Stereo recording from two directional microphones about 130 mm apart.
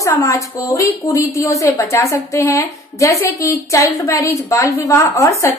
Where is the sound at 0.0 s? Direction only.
25° left (ahead or behind).